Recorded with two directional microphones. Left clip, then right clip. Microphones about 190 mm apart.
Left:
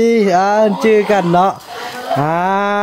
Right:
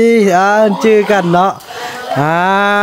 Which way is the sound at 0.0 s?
15° right (ahead or behind).